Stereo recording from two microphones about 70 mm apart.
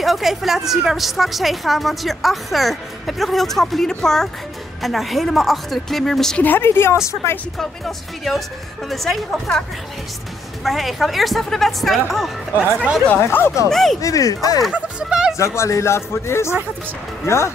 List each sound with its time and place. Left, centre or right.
0.0 s a woman's voice: centre
6.4 s speech: left
7.5 s a woman's voice: centre
13.1 s speech: left
13.7 s a woman's voice: centre
14.0 s speech: left
14.7 s speech: centre
15.3 s speech: left